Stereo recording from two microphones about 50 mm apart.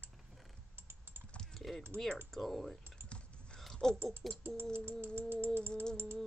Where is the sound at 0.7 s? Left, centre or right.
Right.